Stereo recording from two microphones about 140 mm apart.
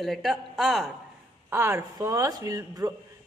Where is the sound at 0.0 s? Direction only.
Centre (ahead or behind).